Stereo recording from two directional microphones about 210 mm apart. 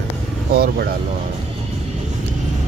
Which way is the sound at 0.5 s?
50° right (ahead or behind).